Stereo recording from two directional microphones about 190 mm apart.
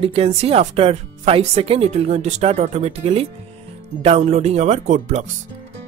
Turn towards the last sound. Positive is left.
turn(degrees=-40)  # may be behind; listen again after turning